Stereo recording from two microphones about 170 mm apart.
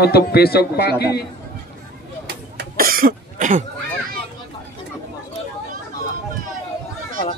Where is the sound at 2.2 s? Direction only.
70° right (ahead or behind); by 3.6 s 50° right (ahead or behind).